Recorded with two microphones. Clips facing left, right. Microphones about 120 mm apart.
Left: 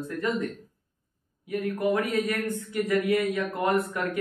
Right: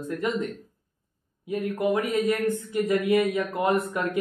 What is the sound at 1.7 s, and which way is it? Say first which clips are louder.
Speech: right 1 dB; 20° right (ahead or behind).